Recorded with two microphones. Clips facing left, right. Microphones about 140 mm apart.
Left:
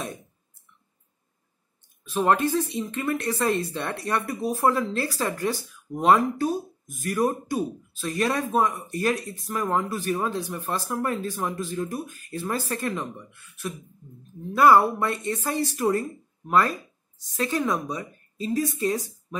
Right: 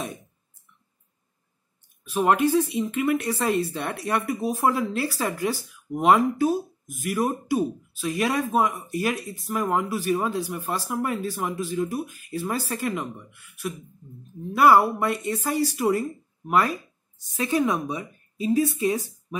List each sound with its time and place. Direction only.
2.0 s speech: 15° right (ahead or behind)